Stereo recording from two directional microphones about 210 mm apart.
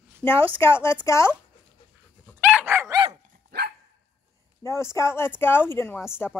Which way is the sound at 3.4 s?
45° right (ahead or behind).